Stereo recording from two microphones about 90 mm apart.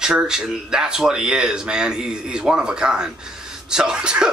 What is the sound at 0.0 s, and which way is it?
Speech, 10° right (ahead or behind).